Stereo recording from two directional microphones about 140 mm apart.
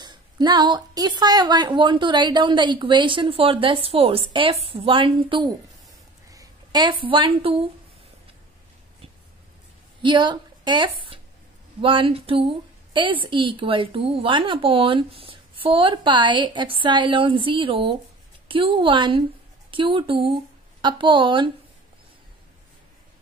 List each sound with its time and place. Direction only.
0.0 s a woman's voice: 30° right (ahead or behind)
10.0 s a woman's voice: 35° right (ahead or behind)